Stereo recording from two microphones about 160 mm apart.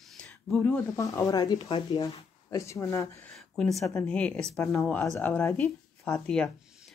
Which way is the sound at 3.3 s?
Centre (ahead or behind).